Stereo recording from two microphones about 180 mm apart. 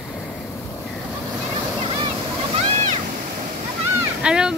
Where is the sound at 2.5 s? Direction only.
35° right (ahead or behind).